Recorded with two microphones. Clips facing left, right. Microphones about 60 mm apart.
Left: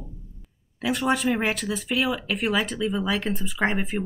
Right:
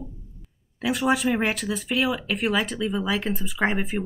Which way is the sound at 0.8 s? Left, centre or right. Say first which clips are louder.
Right 1 dB; centre.